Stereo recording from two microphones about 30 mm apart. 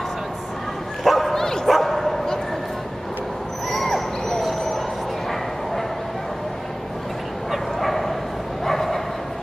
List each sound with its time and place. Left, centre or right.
1.0 s bow-wow: centre
1.3 s bow-wow: centre
1.7 s bow-wow: centre
3.7 s owl: centre
7.5 s bow-wow: centre